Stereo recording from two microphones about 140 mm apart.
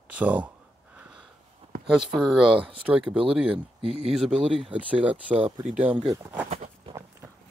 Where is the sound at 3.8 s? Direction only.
45° right (ahead or behind).